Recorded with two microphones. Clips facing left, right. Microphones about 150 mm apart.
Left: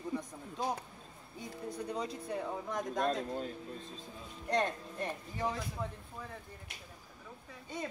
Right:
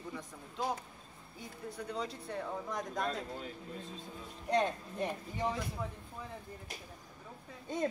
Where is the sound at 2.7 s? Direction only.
Centre (ahead or behind).